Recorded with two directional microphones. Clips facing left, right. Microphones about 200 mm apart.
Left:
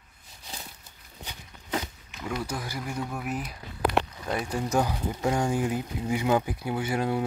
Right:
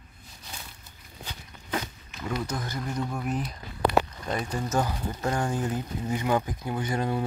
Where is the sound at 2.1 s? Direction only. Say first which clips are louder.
Right 1 dB; 5° left (ahead or behind).